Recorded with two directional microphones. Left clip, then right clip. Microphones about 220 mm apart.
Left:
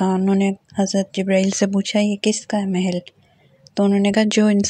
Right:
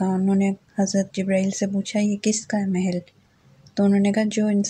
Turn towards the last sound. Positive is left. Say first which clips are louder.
# left 6 dB
turn(degrees=40)  # may be behind; listen again after turning